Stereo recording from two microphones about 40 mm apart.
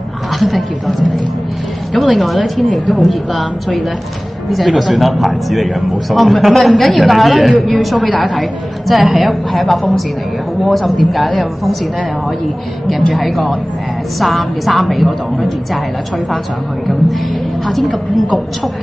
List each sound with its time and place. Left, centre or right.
0.4 s speech: centre
2.0 s speech: centre
12.8 s speech: centre
17.6 s speech: centre